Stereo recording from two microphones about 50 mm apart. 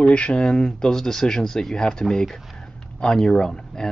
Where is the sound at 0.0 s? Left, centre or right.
Left.